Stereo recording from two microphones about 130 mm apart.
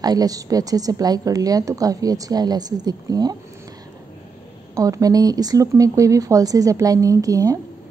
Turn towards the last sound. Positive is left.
turn(degrees=-25)  # may be behind; listen again after turning